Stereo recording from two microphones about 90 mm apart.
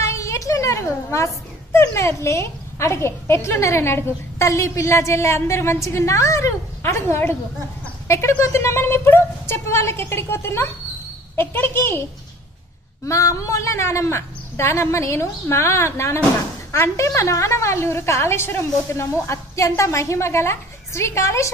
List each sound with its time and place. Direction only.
0.0 s a child's voice: 35° left (ahead or behind)
13.0 s a woman's voice: 35° left (ahead or behind)